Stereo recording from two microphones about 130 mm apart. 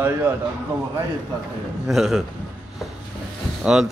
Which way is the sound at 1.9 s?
Centre (ahead or behind).